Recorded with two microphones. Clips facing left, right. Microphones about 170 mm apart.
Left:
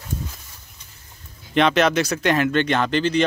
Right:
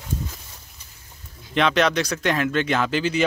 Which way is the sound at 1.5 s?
Centre (ahead or behind).